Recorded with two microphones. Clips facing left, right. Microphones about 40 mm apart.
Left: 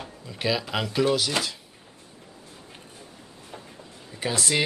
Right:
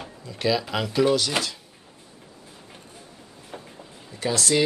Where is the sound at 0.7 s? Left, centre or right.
Centre.